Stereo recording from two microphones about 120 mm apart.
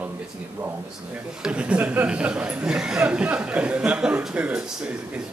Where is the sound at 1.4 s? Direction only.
10° right (ahead or behind).